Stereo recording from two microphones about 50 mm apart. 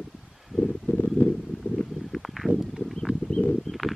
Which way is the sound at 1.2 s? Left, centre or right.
Left.